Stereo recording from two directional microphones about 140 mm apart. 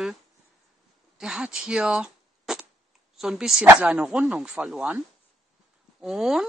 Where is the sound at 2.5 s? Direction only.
5° right (ahead or behind).